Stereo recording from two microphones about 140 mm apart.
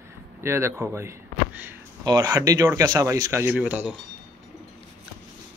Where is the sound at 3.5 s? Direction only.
10° right (ahead or behind).